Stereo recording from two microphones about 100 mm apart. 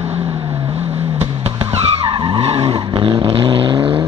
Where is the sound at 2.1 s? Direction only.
80° right; by 4.0 s 60° right (ahead or behind).